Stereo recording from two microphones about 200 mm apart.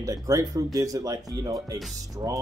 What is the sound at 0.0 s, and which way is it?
Speech, 15° right (ahead or behind).